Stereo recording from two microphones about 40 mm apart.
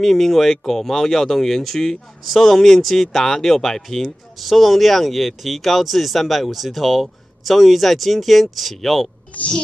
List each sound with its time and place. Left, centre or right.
0.0 s speech: centre
9.3 s speech: left